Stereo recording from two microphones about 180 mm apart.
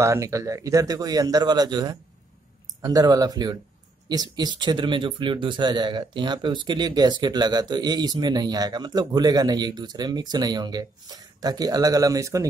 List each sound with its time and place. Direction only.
0.0 s speech: 15° right (ahead or behind)